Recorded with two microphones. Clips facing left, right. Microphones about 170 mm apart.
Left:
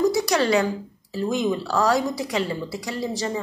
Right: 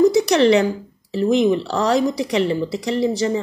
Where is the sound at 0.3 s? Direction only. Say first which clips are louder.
Right 6 dB; 20° right (ahead or behind).